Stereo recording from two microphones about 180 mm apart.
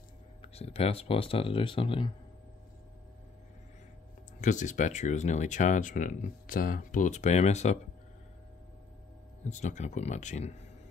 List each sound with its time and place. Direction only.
0.4 s speech: 35° left (ahead or behind)
4.4 s speech: 45° left (ahead or behind)
9.4 s speech: 40° left (ahead or behind)